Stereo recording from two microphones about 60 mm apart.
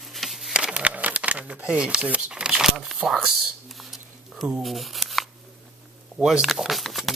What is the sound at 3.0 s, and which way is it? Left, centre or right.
Speech, centre.